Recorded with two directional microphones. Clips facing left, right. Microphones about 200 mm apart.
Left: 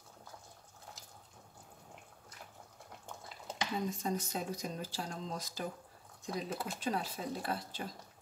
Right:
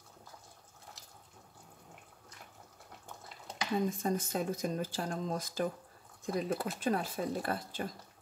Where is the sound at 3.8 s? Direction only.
50° right (ahead or behind).